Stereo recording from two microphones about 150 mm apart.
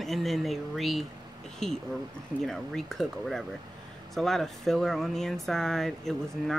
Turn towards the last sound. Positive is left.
turn(degrees=0)  # may be behind; listen again after turning